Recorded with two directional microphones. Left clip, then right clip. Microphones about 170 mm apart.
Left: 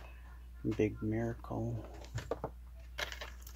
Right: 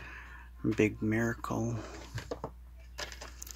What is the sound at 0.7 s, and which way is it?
Speech, 20° right (ahead or behind).